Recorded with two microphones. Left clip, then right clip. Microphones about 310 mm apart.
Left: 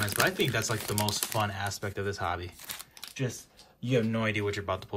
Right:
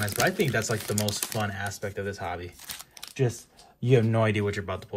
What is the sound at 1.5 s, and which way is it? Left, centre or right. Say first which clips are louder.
Speech: right 1 dB; centre.